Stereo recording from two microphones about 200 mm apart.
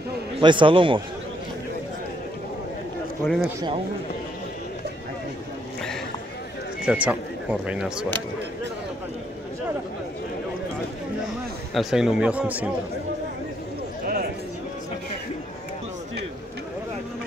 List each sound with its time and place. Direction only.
0.4 s a man's voice: 25° right (ahead or behind)
3.2 s a man's voice: 10° left (ahead or behind)
6.9 s speech: 5° right (ahead or behind)
11.7 s speech: centre (ahead or behind)